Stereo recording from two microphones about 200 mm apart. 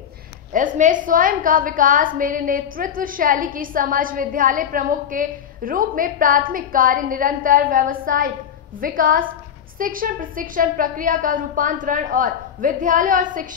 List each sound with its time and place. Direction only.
0.5 s a woman's voice: 40° right (ahead or behind)